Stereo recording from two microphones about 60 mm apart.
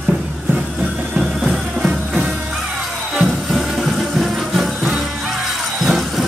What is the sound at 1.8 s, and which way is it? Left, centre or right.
Music, centre.